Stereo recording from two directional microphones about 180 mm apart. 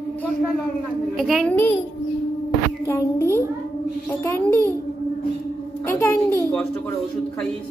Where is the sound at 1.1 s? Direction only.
Centre (ahead or behind).